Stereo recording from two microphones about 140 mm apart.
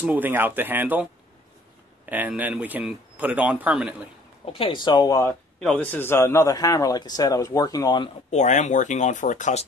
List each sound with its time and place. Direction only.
0.0 s speech: 10° right (ahead or behind)
2.0 s speech: 10° right (ahead or behind)
4.5 s speech: 40° left (ahead or behind); by 5.3 s 25° left (ahead or behind)
5.6 s a man's voice: 5° left (ahead or behind); by 8.1 s 30° left (ahead or behind)
8.3 s speech: 55° left (ahead or behind)